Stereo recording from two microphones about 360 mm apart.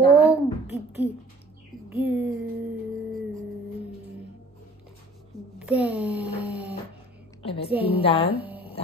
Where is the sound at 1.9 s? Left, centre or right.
Centre.